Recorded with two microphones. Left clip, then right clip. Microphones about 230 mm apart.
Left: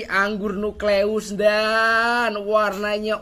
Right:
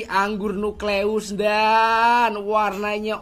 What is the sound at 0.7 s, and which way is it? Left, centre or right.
Speech, right.